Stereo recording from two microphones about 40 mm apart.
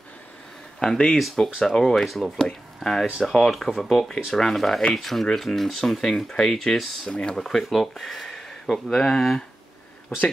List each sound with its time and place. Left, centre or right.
0.7 s speech: centre
1.1 s speech: centre
1.6 s speech: centre
2.0 s speech: centre
2.3 s speech: centre
7.1 s speech: left
7.3 s speech: centre